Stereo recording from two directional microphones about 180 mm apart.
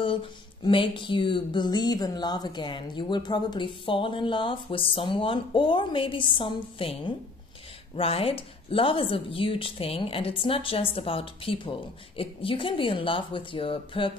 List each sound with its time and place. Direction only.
0.0 s a woman's voice: 30° left (ahead or behind)